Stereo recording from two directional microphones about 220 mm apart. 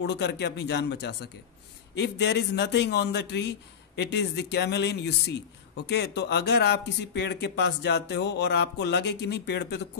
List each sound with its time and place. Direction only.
0.0 s speech: 50° left (ahead or behind)